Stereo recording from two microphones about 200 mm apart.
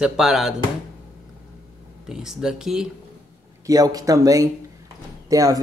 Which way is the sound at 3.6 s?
20° right (ahead or behind).